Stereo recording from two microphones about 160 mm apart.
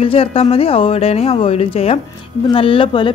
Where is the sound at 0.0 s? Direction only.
35° left (ahead or behind).